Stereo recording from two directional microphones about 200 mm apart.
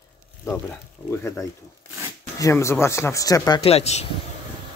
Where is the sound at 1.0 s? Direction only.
10° left (ahead or behind); by 4.0 s 30° left (ahead or behind).